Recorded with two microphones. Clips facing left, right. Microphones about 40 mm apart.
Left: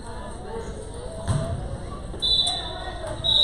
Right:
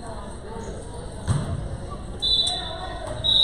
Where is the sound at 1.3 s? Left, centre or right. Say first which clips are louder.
Even; centre.